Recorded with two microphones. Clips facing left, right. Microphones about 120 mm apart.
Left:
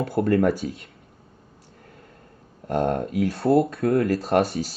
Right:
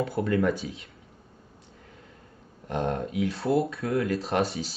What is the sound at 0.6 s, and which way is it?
Speech, 60° left (ahead or behind).